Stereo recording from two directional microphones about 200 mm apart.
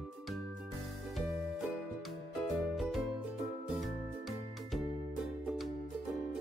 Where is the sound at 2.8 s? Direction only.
Centre (ahead or behind).